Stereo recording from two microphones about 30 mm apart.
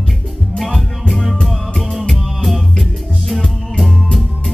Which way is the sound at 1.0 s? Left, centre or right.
Centre.